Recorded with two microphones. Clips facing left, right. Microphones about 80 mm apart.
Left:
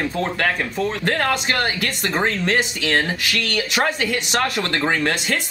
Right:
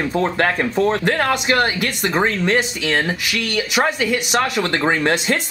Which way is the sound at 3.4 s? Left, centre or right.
Centre.